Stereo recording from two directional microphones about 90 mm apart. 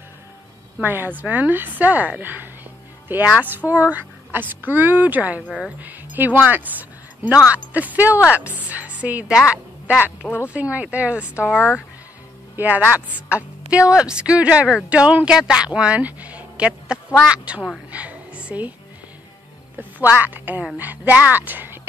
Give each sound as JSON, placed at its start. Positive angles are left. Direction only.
{"t": 0.8, "sound": "a woman's voice", "side_deg": -25}
{"t": 12.5, "sound": "a woman's voice", "side_deg": -20}
{"t": 17.9, "sound": "music", "side_deg": -15}
{"t": 20.0, "sound": "a woman's voice", "side_deg": -20}